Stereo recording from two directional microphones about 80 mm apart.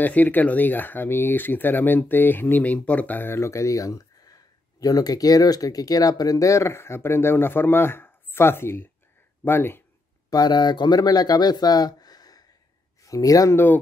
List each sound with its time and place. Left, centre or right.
0.0 s speech: left
10.3 s speech: left